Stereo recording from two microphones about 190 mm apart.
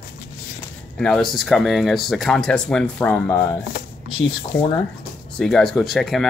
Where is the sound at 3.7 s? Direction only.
55° left (ahead or behind).